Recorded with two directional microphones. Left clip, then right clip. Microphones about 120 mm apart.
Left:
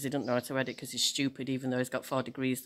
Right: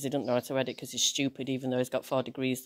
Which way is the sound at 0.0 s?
25° right (ahead or behind).